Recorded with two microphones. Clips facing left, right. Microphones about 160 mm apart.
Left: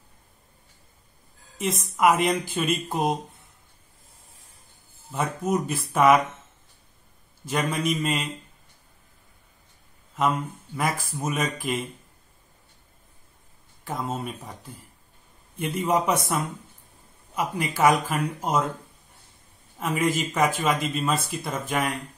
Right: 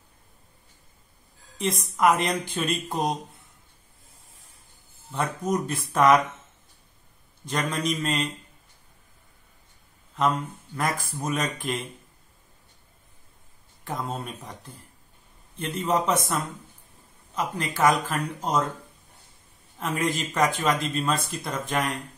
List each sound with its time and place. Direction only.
1.6 s speech: 5° left (ahead or behind)
5.1 s speech: 5° left (ahead or behind)
7.4 s speech: 5° left (ahead or behind)
10.8 s speech: 5° left (ahead or behind)
13.8 s speech: centre (ahead or behind)
17.4 s speech: 10° left (ahead or behind)
19.8 s speech: 5° left (ahead or behind)